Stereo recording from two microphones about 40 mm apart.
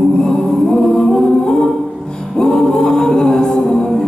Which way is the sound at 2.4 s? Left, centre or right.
Centre.